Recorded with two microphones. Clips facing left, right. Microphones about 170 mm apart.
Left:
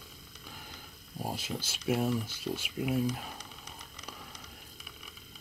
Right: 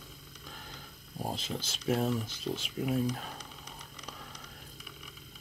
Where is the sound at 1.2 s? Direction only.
5° left (ahead or behind).